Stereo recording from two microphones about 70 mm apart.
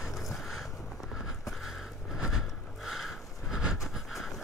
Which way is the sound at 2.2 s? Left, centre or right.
Centre.